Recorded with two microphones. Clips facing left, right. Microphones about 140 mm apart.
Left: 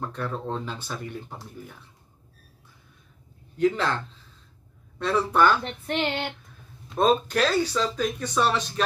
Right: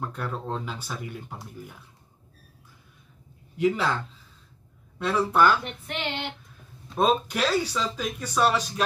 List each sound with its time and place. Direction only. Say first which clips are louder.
0.0 s speech: left 1 dB; 10° right (ahead or behind)
3.5 s speech: left 1 dB; 10° right (ahead or behind)
5.6 s female singing: left 6 dB; 40° left (ahead or behind)
7.0 s speech: left 2 dB; 10° right (ahead or behind)